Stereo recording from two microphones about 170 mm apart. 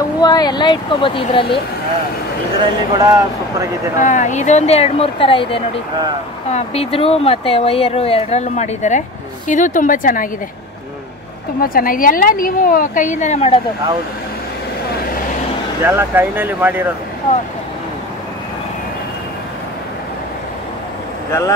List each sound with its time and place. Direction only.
0.2 s speech: 25° left (ahead or behind)
3.0 s speech: 20° right (ahead or behind)
4.0 s speech: 45° left (ahead or behind)
11.6 s a woman's voice: 55° left (ahead or behind); by 13.6 s 40° left (ahead or behind)
15.8 s speech: 15° right (ahead or behind)
21.3 s speech: 20° left (ahead or behind)